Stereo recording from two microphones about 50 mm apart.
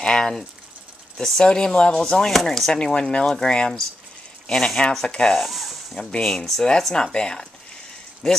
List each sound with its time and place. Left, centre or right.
0.0 s speech: centre
2.2 s speech: centre
2.8 s speech: centre
5.4 s snake: centre
5.9 s speech: centre